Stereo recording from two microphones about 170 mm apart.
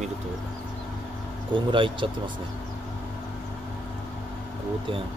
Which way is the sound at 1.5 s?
30° right (ahead or behind).